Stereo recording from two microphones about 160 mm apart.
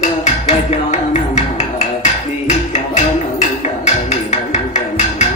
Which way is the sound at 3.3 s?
45° left (ahead or behind).